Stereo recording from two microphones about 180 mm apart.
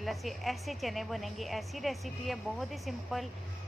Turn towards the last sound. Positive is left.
turn(degrees=0)  # may be behind; listen again after turning